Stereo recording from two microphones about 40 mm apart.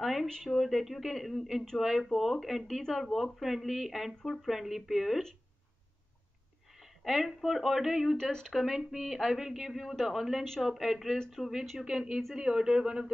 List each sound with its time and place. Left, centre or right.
0.0 s a woman's voice: centre
7.1 s speech: centre
8.2 s speech: centre
8.5 s a woman's voice: centre
11.4 s speech: centre
11.8 s speech: centre